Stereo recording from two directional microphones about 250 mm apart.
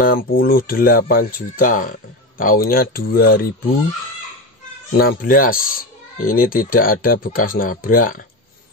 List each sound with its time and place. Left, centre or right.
0.0 s speech: left
4.9 s speech: left